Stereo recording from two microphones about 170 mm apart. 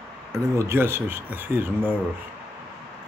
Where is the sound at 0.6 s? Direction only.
15° right (ahead or behind).